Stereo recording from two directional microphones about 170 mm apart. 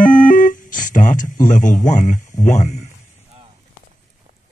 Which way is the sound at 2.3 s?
45° left (ahead or behind).